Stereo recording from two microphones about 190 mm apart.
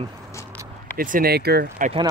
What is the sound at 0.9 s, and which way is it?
Speech, 45° right (ahead or behind).